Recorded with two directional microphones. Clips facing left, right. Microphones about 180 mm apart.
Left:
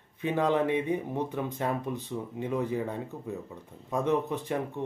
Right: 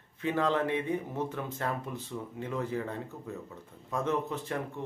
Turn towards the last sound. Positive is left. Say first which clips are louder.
# left 4 dB
turn(degrees=20)  # may be behind; listen again after turning